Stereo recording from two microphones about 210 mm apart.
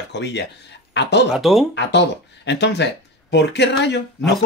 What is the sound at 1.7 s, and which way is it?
Speech, 55° left (ahead or behind).